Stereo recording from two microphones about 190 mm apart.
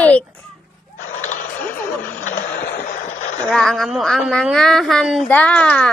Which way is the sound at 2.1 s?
45° left (ahead or behind).